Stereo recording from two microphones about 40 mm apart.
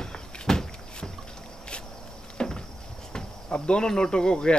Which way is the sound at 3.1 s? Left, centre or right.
Left.